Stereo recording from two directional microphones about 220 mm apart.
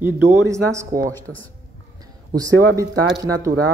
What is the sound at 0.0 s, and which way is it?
A man's voice, 10° right (ahead or behind).